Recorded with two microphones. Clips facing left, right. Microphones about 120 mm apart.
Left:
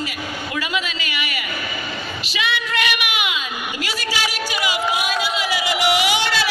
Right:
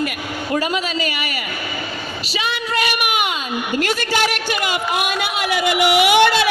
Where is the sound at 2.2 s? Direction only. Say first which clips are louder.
Right 1 dB; 40° right (ahead or behind).